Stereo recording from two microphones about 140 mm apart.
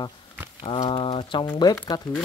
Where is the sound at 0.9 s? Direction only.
40° left (ahead or behind).